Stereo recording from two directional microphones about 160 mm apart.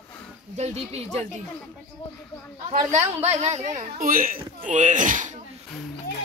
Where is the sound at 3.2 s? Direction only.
40° right (ahead or behind).